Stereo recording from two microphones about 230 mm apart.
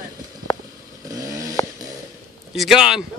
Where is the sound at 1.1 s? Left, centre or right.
Centre.